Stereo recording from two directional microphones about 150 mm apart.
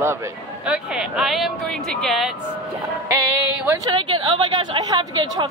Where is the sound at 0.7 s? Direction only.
5° right (ahead or behind).